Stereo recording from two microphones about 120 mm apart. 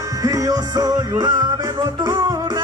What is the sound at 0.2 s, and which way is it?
Music, 30° right (ahead or behind).